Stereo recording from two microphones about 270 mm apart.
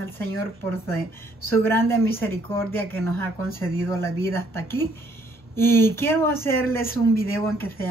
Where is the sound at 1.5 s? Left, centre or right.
Centre.